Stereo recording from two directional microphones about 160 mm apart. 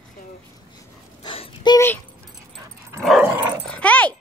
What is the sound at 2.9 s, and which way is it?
Dog, centre (ahead or behind).